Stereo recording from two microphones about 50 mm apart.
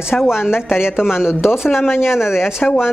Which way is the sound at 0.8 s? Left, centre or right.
Left.